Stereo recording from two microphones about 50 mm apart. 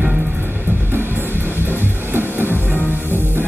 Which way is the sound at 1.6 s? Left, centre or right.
Right.